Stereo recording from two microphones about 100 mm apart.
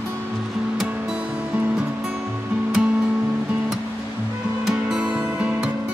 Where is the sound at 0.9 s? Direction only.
10° right (ahead or behind).